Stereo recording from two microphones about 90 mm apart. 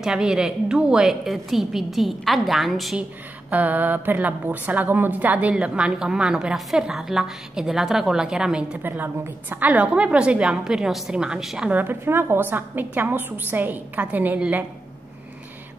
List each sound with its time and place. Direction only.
0.0 s a woman's voice: 5° right (ahead or behind)
3.0 s a woman's voice: 15° right (ahead or behind)
8.8 s a woman's voice: 20° right (ahead or behind)
11.7 s a woman's voice: 20° right (ahead or behind)